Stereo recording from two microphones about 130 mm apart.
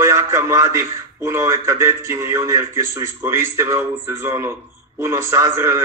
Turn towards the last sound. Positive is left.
turn(degrees=-20)  # may be behind; listen again after turning